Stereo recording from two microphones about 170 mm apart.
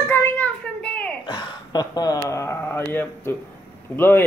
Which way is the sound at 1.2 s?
25° left (ahead or behind).